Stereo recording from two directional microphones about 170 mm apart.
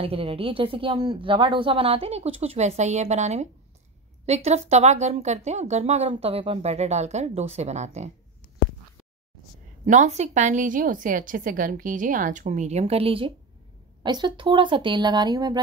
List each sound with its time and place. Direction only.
0.0 s a woman's voice: 35° right (ahead or behind)
9.8 s a woman's voice: 45° right (ahead or behind); by 15.6 s 25° right (ahead or behind)